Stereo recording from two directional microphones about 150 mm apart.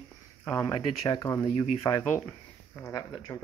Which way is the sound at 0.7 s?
25° left (ahead or behind).